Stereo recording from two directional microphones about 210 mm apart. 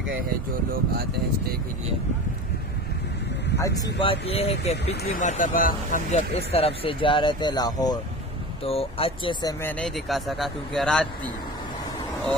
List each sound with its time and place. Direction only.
3.5 s speech: 15° left (ahead or behind)
5.0 s speech: 40° left (ahead or behind); by 11.1 s centre (ahead or behind)